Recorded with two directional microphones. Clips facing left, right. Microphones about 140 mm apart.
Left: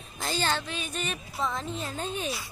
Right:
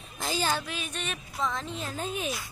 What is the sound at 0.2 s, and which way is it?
A woman's voice, 5° right (ahead or behind).